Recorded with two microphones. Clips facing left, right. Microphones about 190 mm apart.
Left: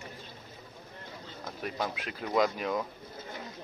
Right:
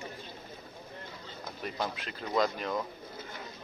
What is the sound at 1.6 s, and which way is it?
Speech, 5° left (ahead or behind).